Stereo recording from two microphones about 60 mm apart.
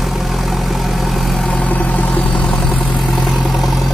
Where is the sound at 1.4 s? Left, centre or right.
Left.